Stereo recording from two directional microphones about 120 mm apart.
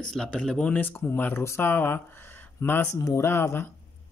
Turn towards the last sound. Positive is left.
turn(degrees=20)  # may be behind; listen again after turning